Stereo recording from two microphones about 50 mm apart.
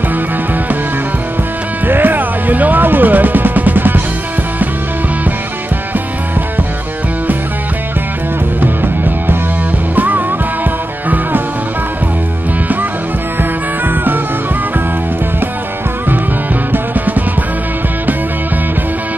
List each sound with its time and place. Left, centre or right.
1.9 s music: right
8.5 s music: right
13.4 s music: right
16.7 s music: right